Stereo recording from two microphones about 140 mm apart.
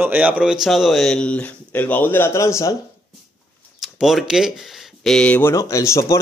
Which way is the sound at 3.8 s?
Centre (ahead or behind).